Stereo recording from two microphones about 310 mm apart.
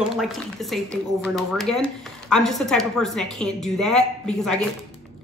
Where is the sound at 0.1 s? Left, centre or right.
Centre.